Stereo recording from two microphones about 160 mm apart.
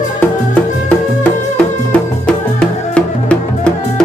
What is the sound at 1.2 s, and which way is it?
Music, 10° left (ahead or behind).